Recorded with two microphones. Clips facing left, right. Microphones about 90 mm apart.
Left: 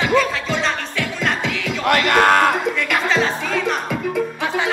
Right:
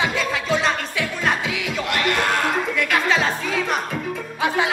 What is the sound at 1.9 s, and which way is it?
Music, 60° left (ahead or behind).